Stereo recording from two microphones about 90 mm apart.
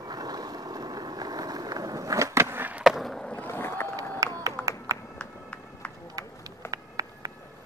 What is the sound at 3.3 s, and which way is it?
Boat, 25° left (ahead or behind).